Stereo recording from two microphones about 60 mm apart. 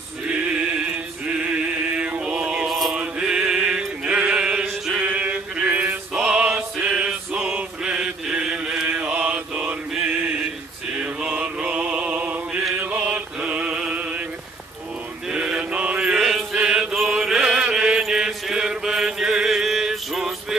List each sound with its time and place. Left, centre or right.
1.2 s mantra: right
2.6 s mantra: centre
3.0 s music: centre
10.9 s music: centre
15.2 s mantra: centre
17.0 s chant: centre
18.0 s mantra: centre